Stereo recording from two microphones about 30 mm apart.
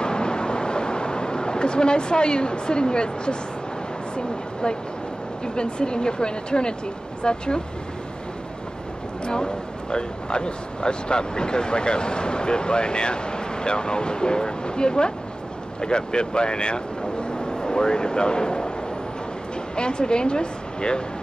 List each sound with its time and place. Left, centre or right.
0.0 s a sound: left
5.4 s speech: left
9.2 s speech: left
19.7 s speech: left